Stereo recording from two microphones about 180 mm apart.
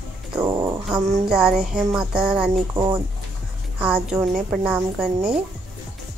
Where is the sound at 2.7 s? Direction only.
20° right (ahead or behind).